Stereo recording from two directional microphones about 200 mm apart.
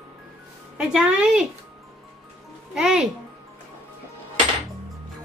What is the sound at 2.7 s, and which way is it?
Speech, 5° right (ahead or behind).